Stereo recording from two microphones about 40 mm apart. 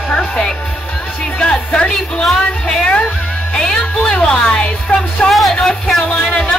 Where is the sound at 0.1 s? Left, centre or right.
Left.